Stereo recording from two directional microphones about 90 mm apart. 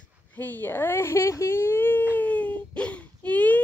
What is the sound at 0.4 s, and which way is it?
Speech, 20° left (ahead or behind).